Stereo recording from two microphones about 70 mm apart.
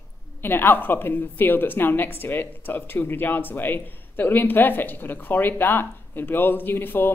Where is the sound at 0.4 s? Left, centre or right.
Left.